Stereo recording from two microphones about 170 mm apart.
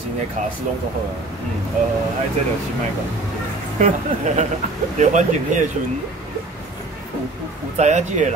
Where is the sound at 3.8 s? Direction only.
45° right (ahead or behind).